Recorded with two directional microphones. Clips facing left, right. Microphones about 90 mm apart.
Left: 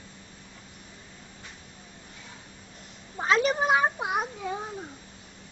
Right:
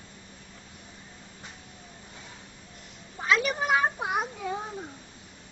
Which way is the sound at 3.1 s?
35° left (ahead or behind).